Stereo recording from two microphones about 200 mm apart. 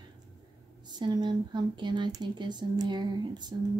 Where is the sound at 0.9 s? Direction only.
20° right (ahead or behind).